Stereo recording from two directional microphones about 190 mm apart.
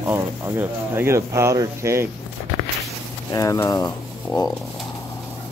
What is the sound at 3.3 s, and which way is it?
Speech, 20° left (ahead or behind).